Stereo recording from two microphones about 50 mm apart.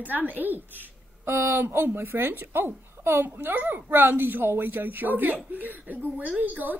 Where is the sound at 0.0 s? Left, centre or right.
Right.